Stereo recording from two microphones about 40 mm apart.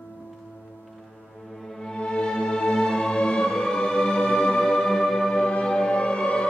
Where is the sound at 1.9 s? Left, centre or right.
Left.